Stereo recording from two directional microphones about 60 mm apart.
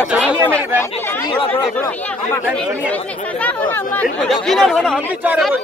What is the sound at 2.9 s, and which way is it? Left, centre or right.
Speech, left.